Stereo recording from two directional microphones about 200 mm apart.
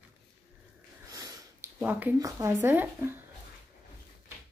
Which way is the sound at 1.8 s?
10° right (ahead or behind).